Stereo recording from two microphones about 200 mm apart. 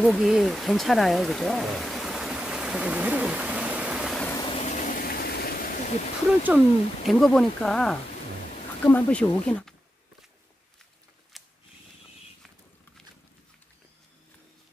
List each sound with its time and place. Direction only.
0.0 s stream: centre (ahead or behind)
4.3 s vehicle: 25° left (ahead or behind); by 5.9 s 45° left (ahead or behind)
7.1 s speech: centre (ahead or behind)
11.3 s mechanisms: centre (ahead or behind)